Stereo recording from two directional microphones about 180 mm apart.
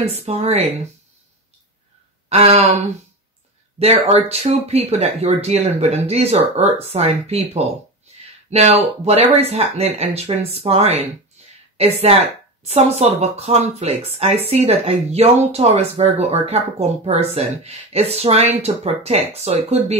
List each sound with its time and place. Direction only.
0.0 s speech: 35° right (ahead or behind)
2.2 s speech: 35° right (ahead or behind)
3.8 s speech: 35° right (ahead or behind)
11.4 s a sound: 35° right (ahead or behind)
11.7 s a woman's voice: 35° right (ahead or behind)